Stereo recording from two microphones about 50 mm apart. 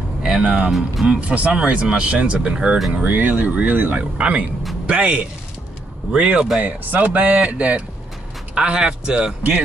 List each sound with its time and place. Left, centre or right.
0.4 s speech: right
0.7 s speech: centre
1.0 s speech: right
2.9 s speech: right
4.0 s a man's voice: centre
6.6 s speech: right; by 9.3 s centre